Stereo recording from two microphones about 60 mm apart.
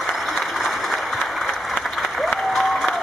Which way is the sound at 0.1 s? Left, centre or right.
Centre.